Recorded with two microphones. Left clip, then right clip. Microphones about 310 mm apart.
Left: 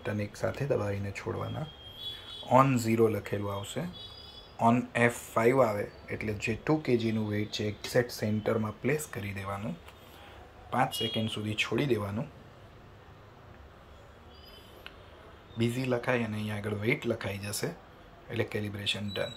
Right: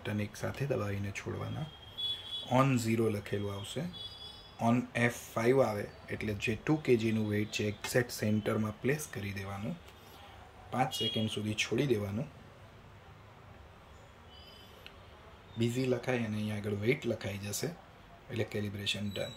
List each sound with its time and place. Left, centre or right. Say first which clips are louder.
0.0 s speech: left 5 dB; centre
2.4 s speech: left 6 dB; centre
10.7 s speech: left 3 dB; centre
15.6 s speech: left 3 dB; centre